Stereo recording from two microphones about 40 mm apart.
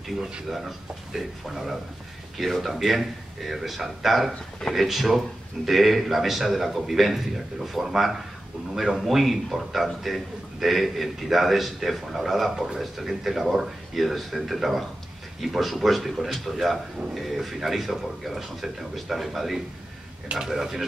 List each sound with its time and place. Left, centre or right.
0.5 s a man's voice: centre